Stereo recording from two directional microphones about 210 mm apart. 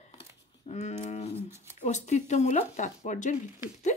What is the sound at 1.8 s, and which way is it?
Speech, 35° left (ahead or behind).